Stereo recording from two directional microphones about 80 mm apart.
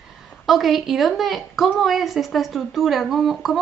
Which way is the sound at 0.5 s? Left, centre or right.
Centre.